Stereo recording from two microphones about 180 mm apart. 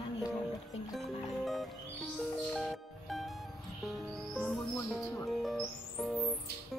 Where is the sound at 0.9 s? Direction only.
Centre (ahead or behind).